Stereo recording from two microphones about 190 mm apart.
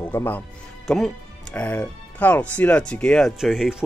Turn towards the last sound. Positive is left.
turn(degrees=0)  # may be behind; listen again after turning